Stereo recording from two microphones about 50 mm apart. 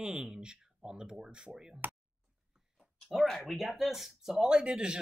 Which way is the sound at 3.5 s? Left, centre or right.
Centre.